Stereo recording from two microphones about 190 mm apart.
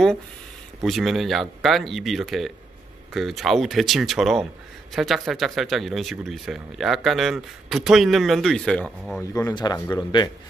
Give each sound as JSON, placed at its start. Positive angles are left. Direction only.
{"t": 0.8, "sound": "speech", "side_deg": 0}
{"t": 9.2, "sound": "speech", "side_deg": 20}